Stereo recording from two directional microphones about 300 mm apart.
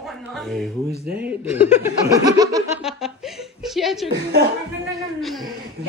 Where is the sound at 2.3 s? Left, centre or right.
Centre.